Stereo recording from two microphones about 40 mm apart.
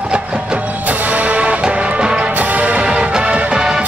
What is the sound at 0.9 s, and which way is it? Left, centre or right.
Music, right.